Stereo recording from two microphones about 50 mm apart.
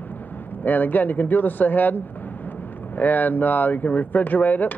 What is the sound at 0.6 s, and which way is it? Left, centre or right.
Speech, left.